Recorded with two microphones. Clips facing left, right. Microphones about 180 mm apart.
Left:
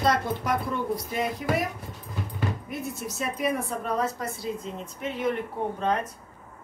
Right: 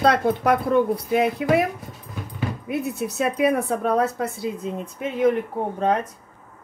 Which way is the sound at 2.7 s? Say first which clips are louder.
Right 8 dB; 65° right (ahead or behind).